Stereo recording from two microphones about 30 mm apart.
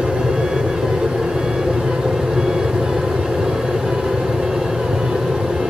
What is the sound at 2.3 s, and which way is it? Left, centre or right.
Vehicle, centre.